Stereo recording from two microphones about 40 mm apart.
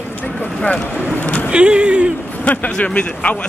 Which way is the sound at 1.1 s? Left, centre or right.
Left.